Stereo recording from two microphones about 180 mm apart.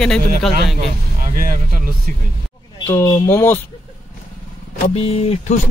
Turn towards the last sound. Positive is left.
turn(degrees=35)  # may be behind; listen again after turning